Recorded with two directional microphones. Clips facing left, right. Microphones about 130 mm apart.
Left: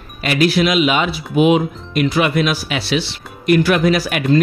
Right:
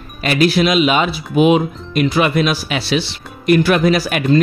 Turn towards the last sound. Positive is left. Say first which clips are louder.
# right 1 dB
turn(degrees=-30)  # may be behind; listen again after turning